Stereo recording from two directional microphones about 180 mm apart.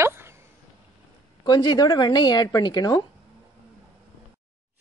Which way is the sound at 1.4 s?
25° left (ahead or behind).